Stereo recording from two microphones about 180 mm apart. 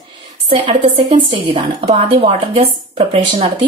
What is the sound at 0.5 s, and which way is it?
A woman's voice, 30° right (ahead or behind).